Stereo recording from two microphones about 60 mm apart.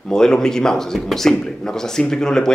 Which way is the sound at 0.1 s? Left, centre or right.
Centre.